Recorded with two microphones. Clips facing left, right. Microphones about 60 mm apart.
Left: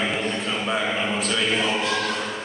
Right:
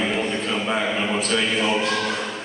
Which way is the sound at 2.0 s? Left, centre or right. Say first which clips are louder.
Right 1 dB; centre.